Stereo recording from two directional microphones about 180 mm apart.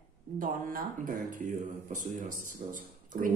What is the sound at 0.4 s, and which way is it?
Speech, 50° right (ahead or behind).